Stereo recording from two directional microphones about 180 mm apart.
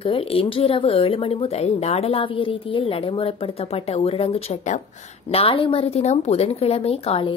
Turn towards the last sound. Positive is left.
turn(degrees=30)  # may be behind; listen again after turning